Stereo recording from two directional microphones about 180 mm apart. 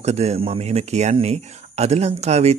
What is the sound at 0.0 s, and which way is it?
Speech, 35° right (ahead or behind).